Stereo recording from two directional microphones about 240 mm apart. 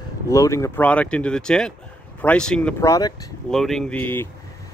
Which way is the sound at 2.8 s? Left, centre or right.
Centre.